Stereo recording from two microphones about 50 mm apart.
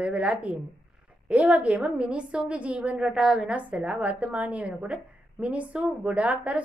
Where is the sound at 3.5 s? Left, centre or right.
Right.